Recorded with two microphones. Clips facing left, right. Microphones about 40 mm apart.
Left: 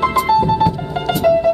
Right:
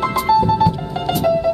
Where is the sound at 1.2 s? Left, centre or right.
Left.